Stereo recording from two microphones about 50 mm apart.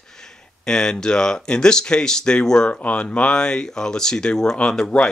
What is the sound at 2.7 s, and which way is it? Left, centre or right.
Speech, left.